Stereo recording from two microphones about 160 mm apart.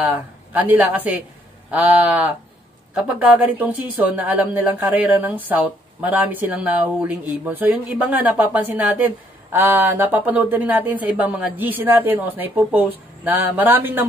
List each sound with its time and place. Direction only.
0.0 s a woman's voice: 10° right (ahead or behind)